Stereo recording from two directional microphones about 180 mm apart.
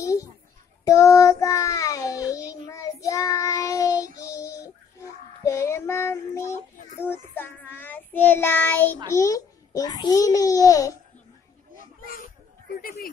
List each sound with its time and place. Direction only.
0.0 s a sound: 20° left (ahead or behind)
0.8 s child singing: 15° left (ahead or behind)
12.8 s speech: 55° left (ahead or behind)